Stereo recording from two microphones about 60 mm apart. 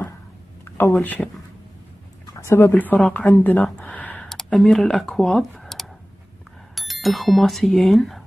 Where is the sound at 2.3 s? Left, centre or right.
Left.